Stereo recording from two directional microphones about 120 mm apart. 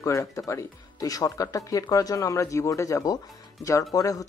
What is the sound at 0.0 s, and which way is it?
Speech, 25° left (ahead or behind).